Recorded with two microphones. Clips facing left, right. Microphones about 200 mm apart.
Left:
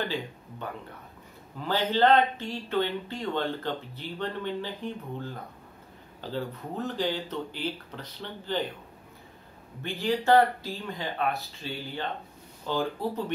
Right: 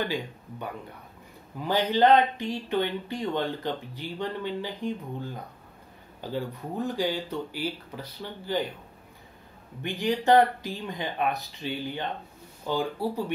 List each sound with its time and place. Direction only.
1.6 s speech: 15° right (ahead or behind)
9.8 s speech: 20° right (ahead or behind)